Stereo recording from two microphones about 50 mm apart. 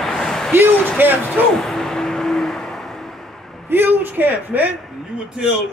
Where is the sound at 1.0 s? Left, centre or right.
Right.